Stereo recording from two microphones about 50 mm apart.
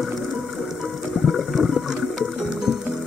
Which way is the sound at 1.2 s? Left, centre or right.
Centre.